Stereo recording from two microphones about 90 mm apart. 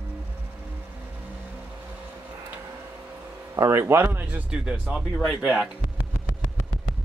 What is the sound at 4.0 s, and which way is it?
Speech, 20° right (ahead or behind).